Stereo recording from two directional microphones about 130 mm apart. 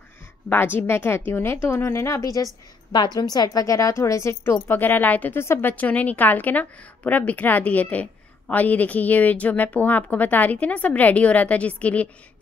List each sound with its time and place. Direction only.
0.5 s a woman's voice: 15° left (ahead or behind)